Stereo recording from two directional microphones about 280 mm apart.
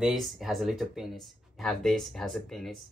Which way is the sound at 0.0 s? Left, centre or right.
Centre.